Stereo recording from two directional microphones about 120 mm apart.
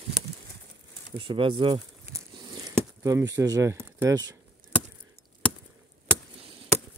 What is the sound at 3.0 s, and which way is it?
Speech, 25° right (ahead or behind).